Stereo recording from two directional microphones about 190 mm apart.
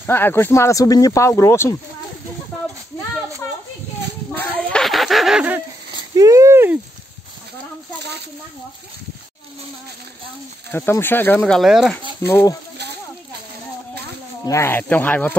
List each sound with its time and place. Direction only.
0.0 s speech: 10° left (ahead or behind)
4.4 s a sound: 5° left (ahead or behind)
5.9 s a sound: 20° right (ahead or behind)
10.7 s speech: 10° left (ahead or behind)
12.3 s speech: 15° left (ahead or behind)
14.4 s speech: 15° left (ahead or behind)